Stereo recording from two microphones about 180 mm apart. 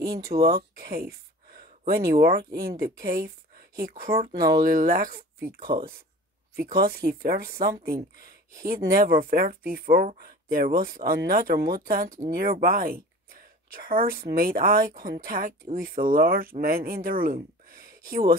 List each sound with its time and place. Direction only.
0.3 s speech: 60° right (ahead or behind)
4.3 s speech: 20° right (ahead or behind)
4.6 s speech: 55° right (ahead or behind)